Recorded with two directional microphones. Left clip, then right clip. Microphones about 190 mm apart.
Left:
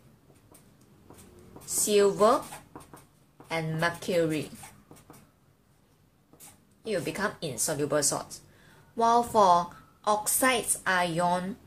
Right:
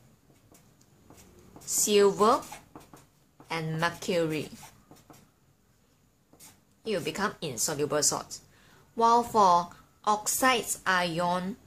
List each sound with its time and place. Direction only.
1.7 s a woman's voice: 15° right (ahead or behind)
3.4 s a woman's voice: 15° right (ahead or behind)
6.8 s a woman's voice: 15° right (ahead or behind)